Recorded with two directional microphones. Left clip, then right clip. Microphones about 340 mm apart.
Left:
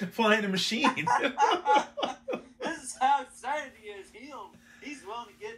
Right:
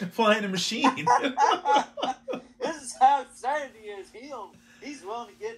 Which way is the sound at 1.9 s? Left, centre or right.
Centre.